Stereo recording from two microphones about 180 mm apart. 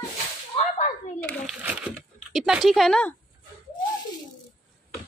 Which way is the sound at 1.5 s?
10° right (ahead or behind).